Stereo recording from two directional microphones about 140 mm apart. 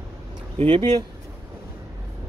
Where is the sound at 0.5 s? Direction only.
45° right (ahead or behind).